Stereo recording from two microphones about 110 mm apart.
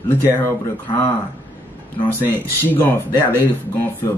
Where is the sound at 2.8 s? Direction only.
20° left (ahead or behind).